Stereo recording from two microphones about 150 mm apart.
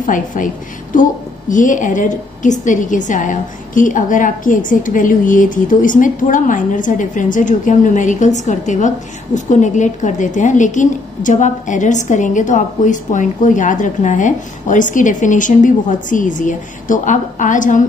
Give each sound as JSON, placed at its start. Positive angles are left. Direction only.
{"t": 0.0, "sound": "a woman's voice", "side_deg": 60}
{"t": 1.5, "sound": "a woman's voice", "side_deg": 60}